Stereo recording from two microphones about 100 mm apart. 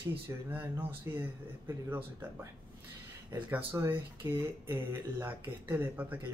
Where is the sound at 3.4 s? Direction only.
20° right (ahead or behind).